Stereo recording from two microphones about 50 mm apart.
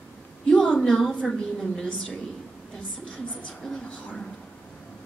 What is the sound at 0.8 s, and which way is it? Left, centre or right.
A woman's voice, centre.